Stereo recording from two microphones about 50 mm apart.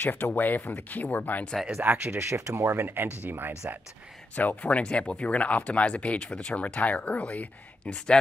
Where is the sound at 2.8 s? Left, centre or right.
Right.